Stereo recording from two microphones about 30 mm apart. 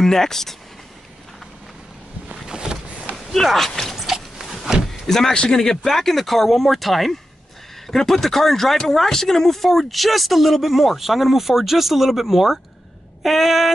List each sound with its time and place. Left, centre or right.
0.0 s speech: centre
2.4 s boat: right
3.5 s speech: centre
3.9 s a sound: centre
5.0 s speech: centre
5.3 s speech: left
5.9 s speech: centre